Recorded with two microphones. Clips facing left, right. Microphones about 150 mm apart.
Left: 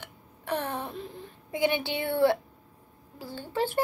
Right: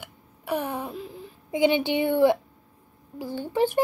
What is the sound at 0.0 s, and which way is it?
Hiccup, 10° right (ahead or behind).